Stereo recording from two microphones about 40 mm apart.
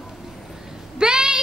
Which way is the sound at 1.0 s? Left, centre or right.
Centre.